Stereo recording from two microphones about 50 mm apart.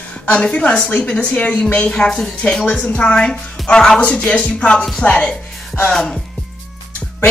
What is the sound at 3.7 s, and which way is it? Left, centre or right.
Music, centre.